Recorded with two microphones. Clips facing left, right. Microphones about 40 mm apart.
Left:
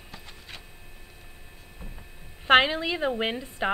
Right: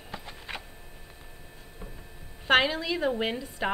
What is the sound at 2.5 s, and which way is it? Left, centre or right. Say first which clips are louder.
A woman's voice: left 3 dB; left.